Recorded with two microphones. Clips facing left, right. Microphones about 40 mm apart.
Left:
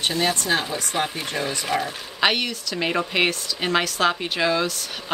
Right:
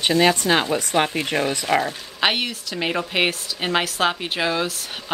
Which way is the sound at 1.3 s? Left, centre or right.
Right.